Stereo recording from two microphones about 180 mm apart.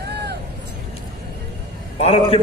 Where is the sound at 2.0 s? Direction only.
35° left (ahead or behind).